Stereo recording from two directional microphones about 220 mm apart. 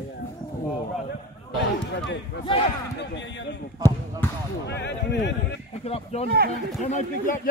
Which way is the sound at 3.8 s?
15° right (ahead or behind).